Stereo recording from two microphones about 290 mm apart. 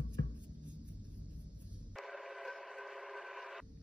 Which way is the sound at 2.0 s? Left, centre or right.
Centre.